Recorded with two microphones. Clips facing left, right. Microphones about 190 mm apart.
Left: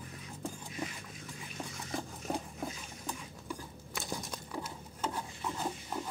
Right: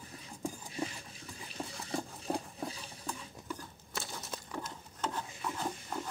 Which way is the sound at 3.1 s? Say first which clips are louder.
Even; 10° left (ahead or behind).